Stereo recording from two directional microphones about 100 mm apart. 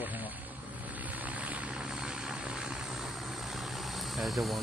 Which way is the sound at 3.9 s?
Centre (ahead or behind).